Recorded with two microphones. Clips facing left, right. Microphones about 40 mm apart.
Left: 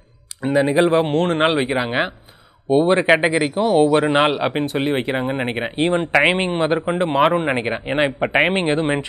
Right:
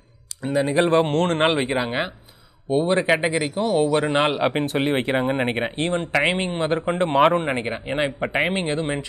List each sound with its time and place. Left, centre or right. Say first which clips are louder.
0.4 s speech: left 5 dB; left
0.7 s speech: left 2 dB; centre
1.9 s speech: left 4 dB; left
4.4 s speech: left 1 dB; centre
5.8 s speech: left 8 dB; left
6.8 s speech: right 3 dB; centre
7.3 s speech: left 3 dB; left
8.2 s speech: left 5 dB; centre
8.5 s speech: left 5 dB; left